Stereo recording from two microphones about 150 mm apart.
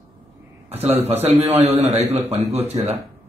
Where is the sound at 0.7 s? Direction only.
45° right (ahead or behind).